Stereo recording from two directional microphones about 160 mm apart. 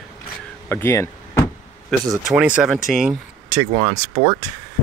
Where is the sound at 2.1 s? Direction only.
5° right (ahead or behind).